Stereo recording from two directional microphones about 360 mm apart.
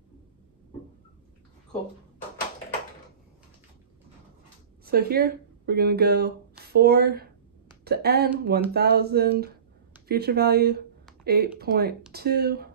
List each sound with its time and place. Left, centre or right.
4.8 s a woman's voice: right